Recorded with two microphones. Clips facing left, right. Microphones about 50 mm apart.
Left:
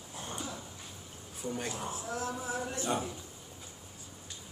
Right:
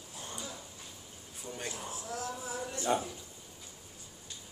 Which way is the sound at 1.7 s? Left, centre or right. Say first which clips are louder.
Left 3 dB; left.